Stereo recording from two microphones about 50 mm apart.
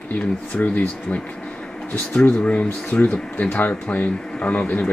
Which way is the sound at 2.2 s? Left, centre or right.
Left.